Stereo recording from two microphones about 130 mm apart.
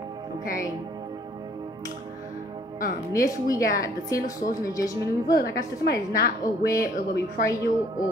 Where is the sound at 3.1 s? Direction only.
25° left (ahead or behind).